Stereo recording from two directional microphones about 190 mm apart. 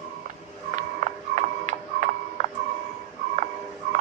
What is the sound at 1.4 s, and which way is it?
Tick-tock, 40° right (ahead or behind).